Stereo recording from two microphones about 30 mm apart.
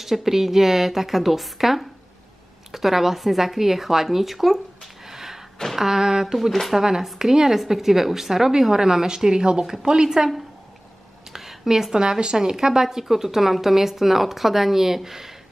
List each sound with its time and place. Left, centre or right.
0.0 s a woman's voice: centre
5.0 s a sound: centre
5.8 s speech: centre
6.2 s a woman's voice: centre
11.3 s a woman's voice: centre